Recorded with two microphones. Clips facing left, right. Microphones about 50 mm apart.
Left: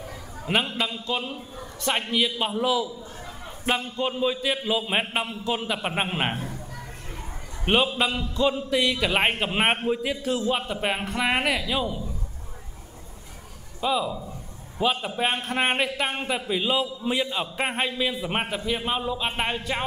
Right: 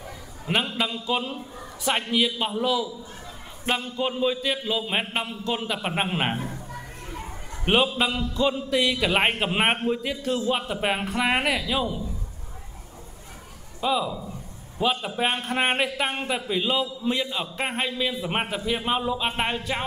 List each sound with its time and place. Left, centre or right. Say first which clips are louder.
0.5 s a man's voice: even; centre
6.3 s a sound: right 2 dB; right
7.6 s a man's voice: even; centre
13.7 s a man's voice: even; centre